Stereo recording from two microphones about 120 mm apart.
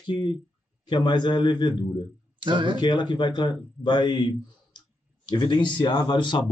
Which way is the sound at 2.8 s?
40° left (ahead or behind).